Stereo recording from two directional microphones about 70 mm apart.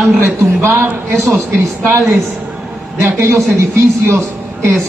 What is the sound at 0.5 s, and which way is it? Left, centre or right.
Speech, right.